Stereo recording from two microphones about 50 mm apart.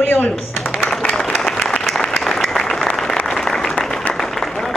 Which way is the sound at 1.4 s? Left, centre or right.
Centre.